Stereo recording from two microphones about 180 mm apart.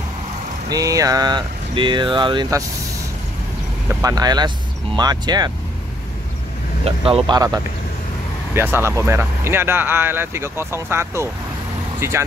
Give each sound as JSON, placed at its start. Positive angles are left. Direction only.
{"t": 0.7, "sound": "speech", "side_deg": -20}
{"t": 4.0, "sound": "speech", "side_deg": -20}
{"t": 6.8, "sound": "speech", "side_deg": -30}
{"t": 8.5, "sound": "speech", "side_deg": -10}